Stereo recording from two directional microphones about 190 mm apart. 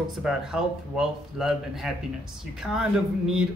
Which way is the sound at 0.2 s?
5° right (ahead or behind).